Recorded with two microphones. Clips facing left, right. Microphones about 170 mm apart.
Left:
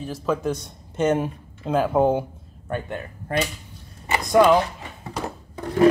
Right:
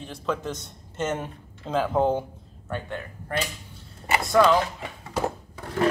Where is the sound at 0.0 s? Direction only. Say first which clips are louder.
Left 5 dB; 5° left (ahead or behind).